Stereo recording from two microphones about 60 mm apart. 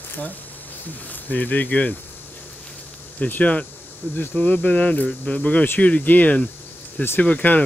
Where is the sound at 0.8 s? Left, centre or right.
Left.